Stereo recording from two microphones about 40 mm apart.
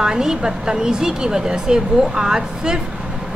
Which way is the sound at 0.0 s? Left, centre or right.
Centre.